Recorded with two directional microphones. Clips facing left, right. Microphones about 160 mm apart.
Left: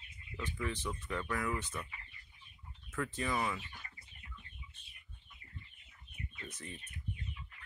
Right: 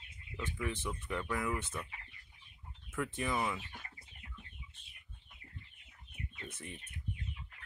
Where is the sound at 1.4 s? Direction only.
25° right (ahead or behind).